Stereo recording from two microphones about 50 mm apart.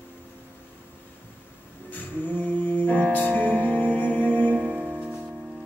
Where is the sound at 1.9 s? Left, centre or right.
Left.